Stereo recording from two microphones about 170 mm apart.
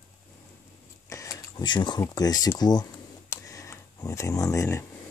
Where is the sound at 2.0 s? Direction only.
20° left (ahead or behind).